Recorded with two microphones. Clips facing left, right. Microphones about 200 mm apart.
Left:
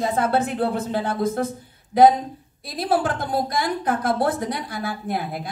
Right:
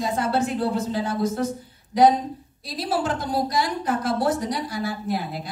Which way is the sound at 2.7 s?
55° left (ahead or behind).